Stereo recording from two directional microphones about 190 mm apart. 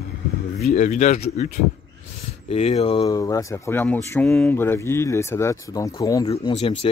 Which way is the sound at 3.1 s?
15° left (ahead or behind).